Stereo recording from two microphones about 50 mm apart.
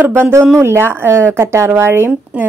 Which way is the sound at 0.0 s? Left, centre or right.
Right.